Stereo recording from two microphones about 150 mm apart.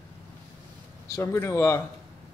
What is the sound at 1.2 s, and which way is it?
Speech, 15° left (ahead or behind).